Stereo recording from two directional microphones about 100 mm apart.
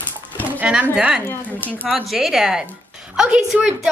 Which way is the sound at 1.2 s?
20° left (ahead or behind).